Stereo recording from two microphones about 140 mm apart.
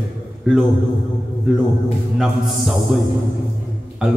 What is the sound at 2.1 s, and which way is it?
Speech, centre (ahead or behind).